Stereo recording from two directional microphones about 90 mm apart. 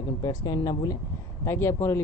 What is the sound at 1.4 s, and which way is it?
Speech, 30° left (ahead or behind).